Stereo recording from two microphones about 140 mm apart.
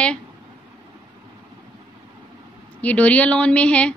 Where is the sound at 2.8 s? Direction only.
10° left (ahead or behind).